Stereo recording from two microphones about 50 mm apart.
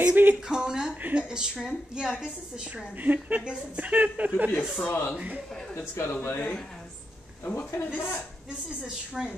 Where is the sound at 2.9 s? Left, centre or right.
Right.